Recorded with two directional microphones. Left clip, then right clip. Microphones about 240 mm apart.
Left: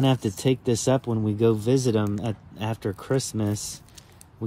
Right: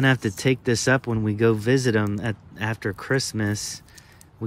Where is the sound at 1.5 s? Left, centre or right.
Centre.